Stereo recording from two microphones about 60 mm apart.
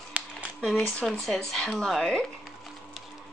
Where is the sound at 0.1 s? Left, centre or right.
Right.